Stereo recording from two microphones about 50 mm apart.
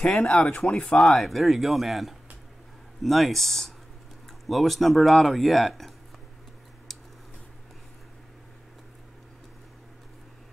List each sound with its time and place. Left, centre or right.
0.0 s speech: centre
0.9 s a man's voice: centre
6.9 s a sound: centre